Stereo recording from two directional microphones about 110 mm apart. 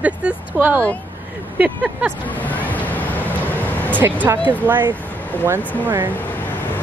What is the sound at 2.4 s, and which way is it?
Vehicle, 15° left (ahead or behind).